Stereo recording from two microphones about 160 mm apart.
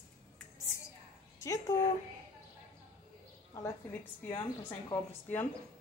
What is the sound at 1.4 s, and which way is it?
Speech, 20° left (ahead or behind).